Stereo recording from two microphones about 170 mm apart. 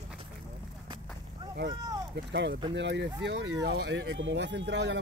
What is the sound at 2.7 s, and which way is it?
Speech, 90° right.